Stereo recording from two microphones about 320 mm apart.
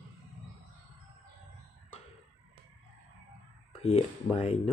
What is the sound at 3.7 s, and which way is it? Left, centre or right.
Speech, centre.